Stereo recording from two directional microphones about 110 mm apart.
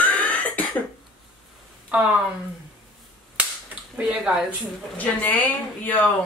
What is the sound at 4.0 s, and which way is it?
Speech, 5° right (ahead or behind).